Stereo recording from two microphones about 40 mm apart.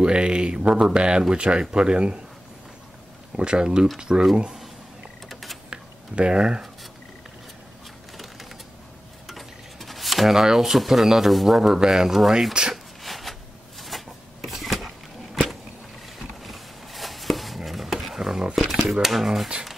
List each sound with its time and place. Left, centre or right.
0.0 s speech: right
3.3 s speech: centre
5.3 s a sound: centre
5.7 s tick-tock: right
9.3 s cutlery: centre
11.3 s speech: centre
11.7 s speech: centre
13.0 s a sound: centre
16.4 s chopping: centre
18.0 s a sound: centre
18.9 s speech: centre